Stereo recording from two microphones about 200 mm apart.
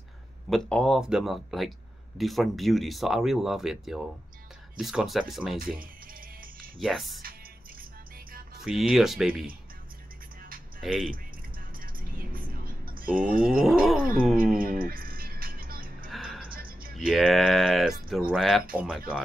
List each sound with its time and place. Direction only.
0.5 s speech: 5° left (ahead or behind)
6.8 s speech: centre (ahead or behind)
8.5 s speech: centre (ahead or behind)
10.8 s speech: centre (ahead or behind)
13.0 s speech: 5° right (ahead or behind)
13.4 s wild animals: 5° right (ahead or behind)
14.6 s music: 45° right (ahead or behind)
16.1 s music: centre (ahead or behind)
16.5 s music: 45° right (ahead or behind)
17.1 s speech: centre (ahead or behind)